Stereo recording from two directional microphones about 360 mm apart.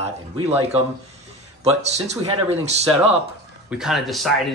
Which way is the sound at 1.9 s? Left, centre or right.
Centre.